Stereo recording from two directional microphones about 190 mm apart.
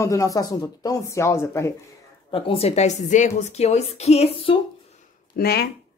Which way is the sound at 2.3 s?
30° left (ahead or behind).